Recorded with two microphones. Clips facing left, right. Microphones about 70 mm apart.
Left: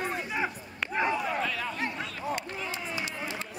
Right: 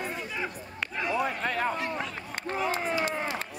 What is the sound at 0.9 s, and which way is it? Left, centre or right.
Basketball bounce, left.